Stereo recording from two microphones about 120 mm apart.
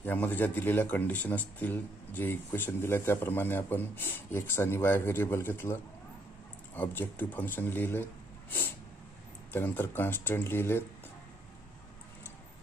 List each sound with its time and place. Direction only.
0.0 s speech: 15° left (ahead or behind)